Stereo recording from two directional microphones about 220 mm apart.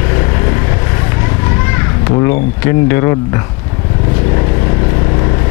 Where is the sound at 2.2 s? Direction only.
10° left (ahead or behind).